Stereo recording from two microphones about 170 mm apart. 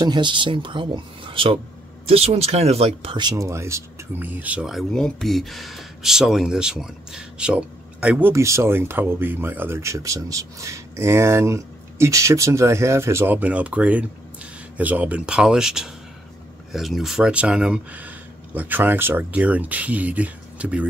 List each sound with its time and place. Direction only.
0.0 s speech: 25° right (ahead or behind); by 20.8 s 10° right (ahead or behind)